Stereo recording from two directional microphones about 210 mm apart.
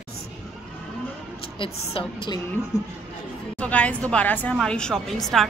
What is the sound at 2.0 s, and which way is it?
Speech, 25° left (ahead or behind).